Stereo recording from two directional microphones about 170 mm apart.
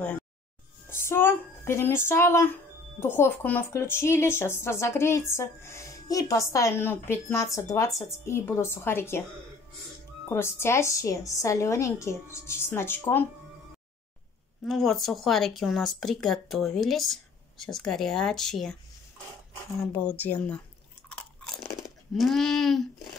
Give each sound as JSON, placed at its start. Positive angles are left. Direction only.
{"t": 0.8, "sound": "a woman's voice", "side_deg": 15}
{"t": 10.3, "sound": "a woman's voice", "side_deg": 15}
{"t": 14.6, "sound": "speech", "side_deg": 0}
{"t": 20.2, "sound": "a woman's voice", "side_deg": 10}
{"t": 21.7, "sound": "speech", "side_deg": 0}